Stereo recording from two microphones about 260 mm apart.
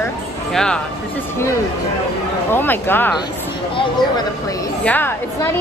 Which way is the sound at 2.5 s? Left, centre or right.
Centre.